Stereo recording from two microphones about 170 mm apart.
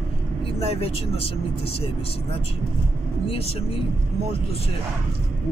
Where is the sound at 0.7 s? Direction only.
35° left (ahead or behind).